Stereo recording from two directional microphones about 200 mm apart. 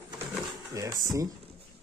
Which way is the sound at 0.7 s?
15° right (ahead or behind).